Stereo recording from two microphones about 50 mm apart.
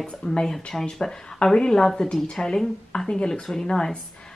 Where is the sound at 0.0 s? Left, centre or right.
Centre.